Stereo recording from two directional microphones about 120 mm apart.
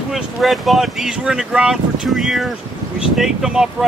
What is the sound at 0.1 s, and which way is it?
Speech, centre (ahead or behind).